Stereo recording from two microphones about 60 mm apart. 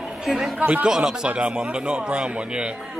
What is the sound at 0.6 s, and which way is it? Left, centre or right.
Speech, right.